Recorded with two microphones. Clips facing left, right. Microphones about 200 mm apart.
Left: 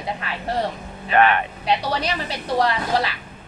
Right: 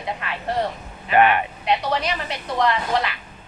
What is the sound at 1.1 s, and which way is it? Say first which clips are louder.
Speech: right 1 dB; 10° right (ahead or behind).